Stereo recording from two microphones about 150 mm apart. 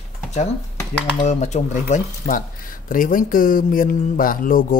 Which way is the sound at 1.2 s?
50° left (ahead or behind).